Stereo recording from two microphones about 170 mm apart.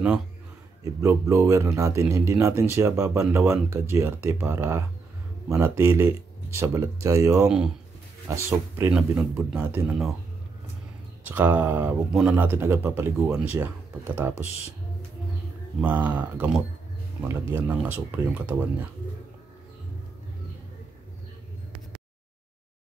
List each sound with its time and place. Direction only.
0.8 s speech: 20° right (ahead or behind)
7.4 s speech: 5° right (ahead or behind)
8.3 s speech: 15° right (ahead or behind)
11.2 s speech: 10° right (ahead or behind)
15.8 s speech: 10° right (ahead or behind)